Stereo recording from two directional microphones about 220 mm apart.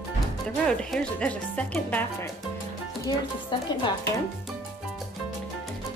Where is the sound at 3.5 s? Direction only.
20° left (ahead or behind).